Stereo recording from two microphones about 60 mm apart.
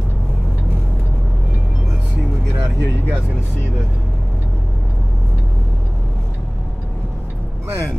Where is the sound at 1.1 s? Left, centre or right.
Centre.